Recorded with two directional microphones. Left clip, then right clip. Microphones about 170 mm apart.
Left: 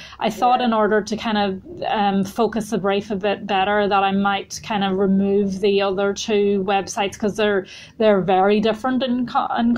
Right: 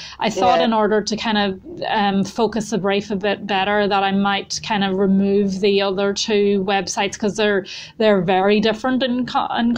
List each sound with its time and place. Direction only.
0.7 s speech: 15° right (ahead or behind)